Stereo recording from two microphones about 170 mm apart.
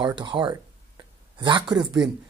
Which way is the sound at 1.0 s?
25° right (ahead or behind).